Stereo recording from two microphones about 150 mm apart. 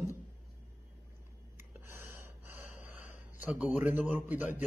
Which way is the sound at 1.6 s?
15° right (ahead or behind).